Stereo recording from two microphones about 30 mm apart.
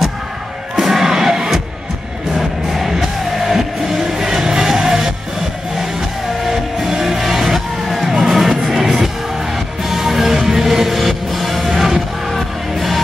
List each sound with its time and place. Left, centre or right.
0.7 s music: centre
2.3 s music: centre
9.8 s music: centre